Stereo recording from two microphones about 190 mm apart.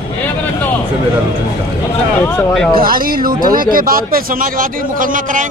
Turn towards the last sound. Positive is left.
turn(degrees=-45)  # may be behind; listen again after turning